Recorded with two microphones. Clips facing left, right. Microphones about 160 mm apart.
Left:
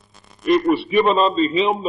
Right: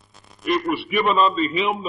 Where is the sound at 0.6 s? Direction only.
30° left (ahead or behind).